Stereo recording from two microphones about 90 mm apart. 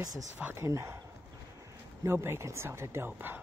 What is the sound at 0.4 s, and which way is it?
Speech, 20° right (ahead or behind).